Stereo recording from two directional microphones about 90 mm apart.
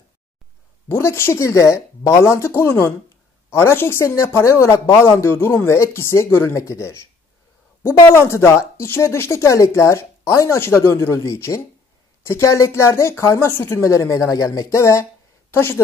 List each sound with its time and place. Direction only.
0.8 s speech: 25° left (ahead or behind)
8.3 s a woman's voice: 30° left (ahead or behind)